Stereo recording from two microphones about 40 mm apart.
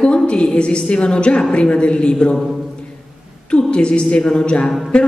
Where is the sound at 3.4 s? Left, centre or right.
Left.